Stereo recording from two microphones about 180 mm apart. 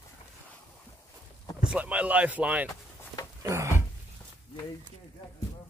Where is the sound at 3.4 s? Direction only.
15° right (ahead or behind).